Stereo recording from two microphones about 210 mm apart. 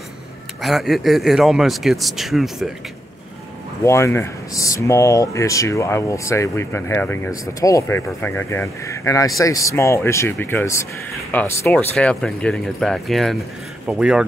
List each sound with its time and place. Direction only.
0.6 s speech: centre (ahead or behind)
3.8 s speech: 15° left (ahead or behind); by 14.2 s 5° right (ahead or behind)